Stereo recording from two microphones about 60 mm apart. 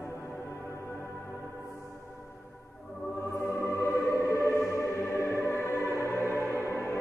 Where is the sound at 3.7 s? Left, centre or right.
Left.